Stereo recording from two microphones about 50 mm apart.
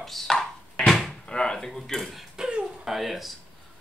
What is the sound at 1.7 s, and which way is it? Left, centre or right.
Cutlery, centre.